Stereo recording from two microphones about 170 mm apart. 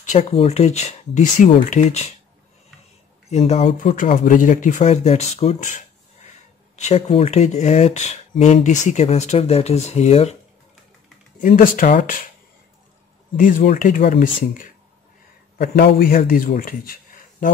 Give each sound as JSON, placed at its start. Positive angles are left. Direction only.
{"t": 0.0, "sound": "speech", "side_deg": 40}
{"t": 3.3, "sound": "speech", "side_deg": 40}
{"t": 6.8, "sound": "speech", "side_deg": 40}
{"t": 11.4, "sound": "speech", "side_deg": 50}
{"t": 13.4, "sound": "speech", "side_deg": 50}
{"t": 15.5, "sound": "a man's voice", "side_deg": 65}